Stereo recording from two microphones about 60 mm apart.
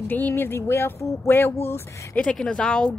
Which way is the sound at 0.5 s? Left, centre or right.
Left.